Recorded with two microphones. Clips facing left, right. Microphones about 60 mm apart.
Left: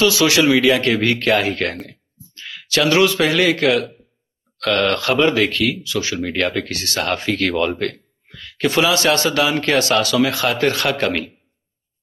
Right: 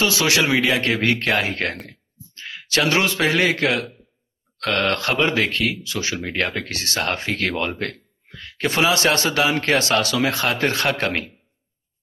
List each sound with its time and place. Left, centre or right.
0.0 s a man's voice: right